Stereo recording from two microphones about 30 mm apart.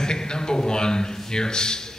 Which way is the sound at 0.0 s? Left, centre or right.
Left.